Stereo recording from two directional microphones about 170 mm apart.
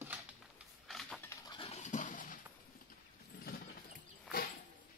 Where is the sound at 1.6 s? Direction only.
45° left (ahead or behind).